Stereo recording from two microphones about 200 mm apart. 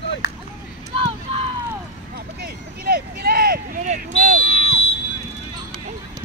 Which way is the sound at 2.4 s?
50° right (ahead or behind).